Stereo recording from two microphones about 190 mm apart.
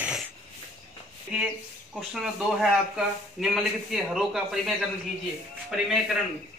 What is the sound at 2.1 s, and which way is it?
Speech, centre (ahead or behind).